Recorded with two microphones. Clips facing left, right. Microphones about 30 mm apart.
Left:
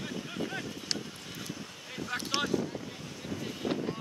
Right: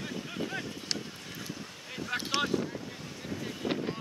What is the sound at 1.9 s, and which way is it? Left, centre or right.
Boat, centre.